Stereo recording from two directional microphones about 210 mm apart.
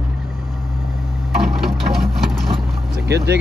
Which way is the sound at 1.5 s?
Centre (ahead or behind).